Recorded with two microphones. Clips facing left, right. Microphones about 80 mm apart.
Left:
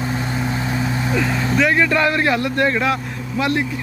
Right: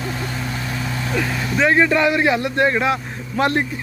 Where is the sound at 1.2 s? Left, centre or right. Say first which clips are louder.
Left 3 dB; left.